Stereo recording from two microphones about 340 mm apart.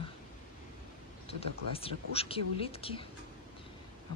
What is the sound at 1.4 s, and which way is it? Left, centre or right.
A woman's voice, centre.